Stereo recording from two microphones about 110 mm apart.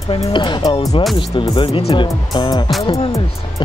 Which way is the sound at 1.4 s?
55° left (ahead or behind).